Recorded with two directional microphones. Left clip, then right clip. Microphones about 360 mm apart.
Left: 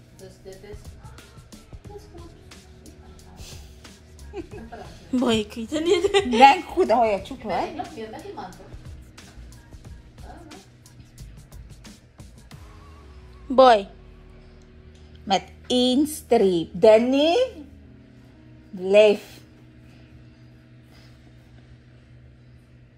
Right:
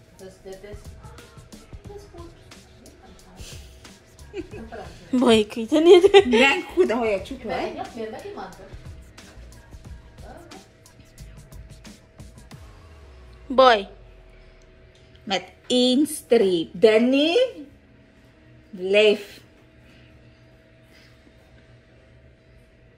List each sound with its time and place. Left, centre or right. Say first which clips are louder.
0.2 s music: right 3 dB; centre
4.5 s a woman's voice: right 2 dB; centre
6.5 s a woman's voice: left 2 dB; centre
7.8 s a woman's voice: right 2 dB; centre
9.8 s music: right 1 dB; centre
13.5 s a woman's voice: left 1 dB; centre
15.8 s a woman's voice: right 1 dB; centre
18.8 s a woman's voice: left 2 dB; centre